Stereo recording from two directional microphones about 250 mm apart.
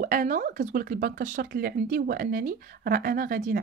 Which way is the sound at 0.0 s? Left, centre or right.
Right.